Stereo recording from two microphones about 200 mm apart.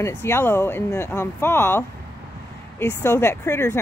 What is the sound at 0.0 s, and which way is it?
Speech, 10° left (ahead or behind).